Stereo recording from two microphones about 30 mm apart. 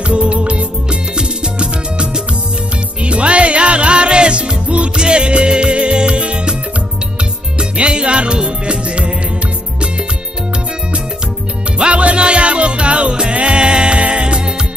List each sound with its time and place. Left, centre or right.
0.1 s music: right
7.5 s music: right
11.8 s music: right